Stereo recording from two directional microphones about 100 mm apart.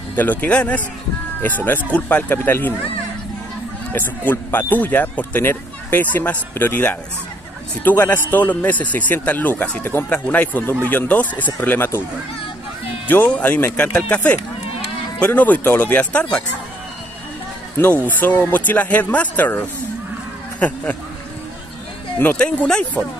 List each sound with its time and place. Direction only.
0.1 s a man's voice: 15° left (ahead or behind)
3.9 s a man's voice: 20° left (ahead or behind)
13.1 s a man's voice: 20° left (ahead or behind)
17.7 s a man's voice: 20° left (ahead or behind)
22.4 s a man's voice: 10° left (ahead or behind)